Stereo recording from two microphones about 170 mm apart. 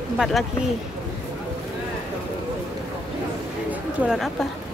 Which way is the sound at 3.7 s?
Centre (ahead or behind).